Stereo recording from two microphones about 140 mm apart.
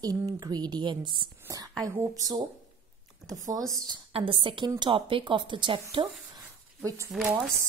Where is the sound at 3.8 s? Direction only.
35° right (ahead or behind).